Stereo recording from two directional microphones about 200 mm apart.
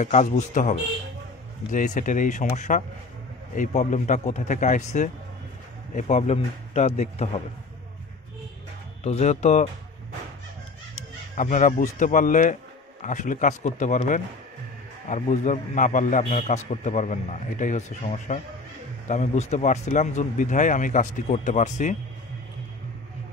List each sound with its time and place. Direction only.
0.0 s a man's voice: 40° left (ahead or behind)
9.0 s a man's voice: 35° left (ahead or behind)
11.3 s a man's voice: 40° left (ahead or behind)